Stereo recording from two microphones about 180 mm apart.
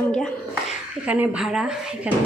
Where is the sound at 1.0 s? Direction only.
10° right (ahead or behind).